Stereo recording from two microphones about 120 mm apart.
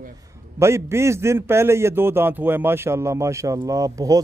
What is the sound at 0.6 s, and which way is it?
A man's voice, 25° right (ahead or behind).